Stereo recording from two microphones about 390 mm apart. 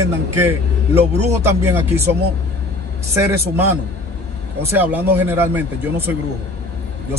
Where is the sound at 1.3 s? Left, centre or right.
Centre.